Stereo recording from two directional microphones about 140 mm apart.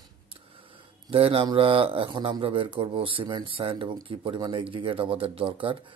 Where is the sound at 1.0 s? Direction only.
40° right (ahead or behind).